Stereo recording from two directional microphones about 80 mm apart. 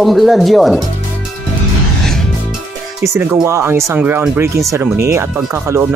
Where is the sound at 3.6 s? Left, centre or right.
Right.